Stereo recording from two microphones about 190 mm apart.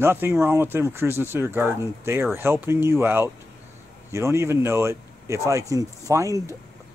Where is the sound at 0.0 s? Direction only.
10° right (ahead or behind).